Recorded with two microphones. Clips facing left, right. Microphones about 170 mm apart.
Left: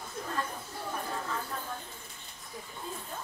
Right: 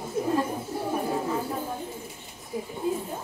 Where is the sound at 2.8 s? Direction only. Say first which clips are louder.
Right 15 dB; 10° right (ahead or behind).